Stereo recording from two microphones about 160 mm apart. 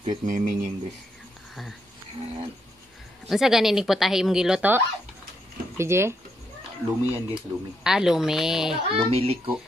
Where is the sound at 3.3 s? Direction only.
Centre (ahead or behind).